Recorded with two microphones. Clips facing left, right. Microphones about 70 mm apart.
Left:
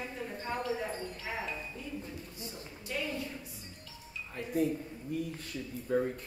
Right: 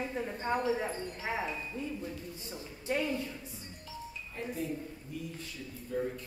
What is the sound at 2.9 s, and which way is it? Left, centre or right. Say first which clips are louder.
Speech: right 5 dB; right.